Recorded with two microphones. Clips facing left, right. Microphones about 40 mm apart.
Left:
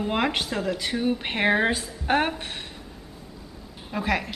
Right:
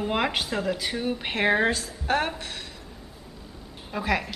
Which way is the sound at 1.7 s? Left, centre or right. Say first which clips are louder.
Left 1 dB; centre.